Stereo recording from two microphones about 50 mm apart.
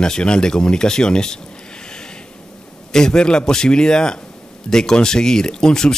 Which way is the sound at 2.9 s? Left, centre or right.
Centre.